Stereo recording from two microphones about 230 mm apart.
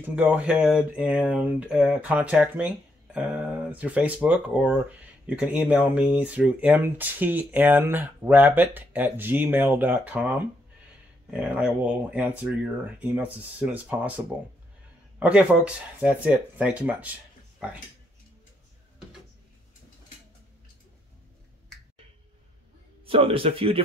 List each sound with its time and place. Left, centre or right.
0.0 s speech: centre
23.0 s a man's voice: right